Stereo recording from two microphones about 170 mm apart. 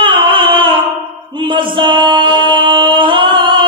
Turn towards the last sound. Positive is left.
turn(degrees=-30)  # may be behind; listen again after turning